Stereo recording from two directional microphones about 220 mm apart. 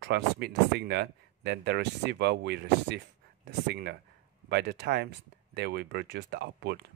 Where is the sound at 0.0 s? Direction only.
50° right (ahead or behind).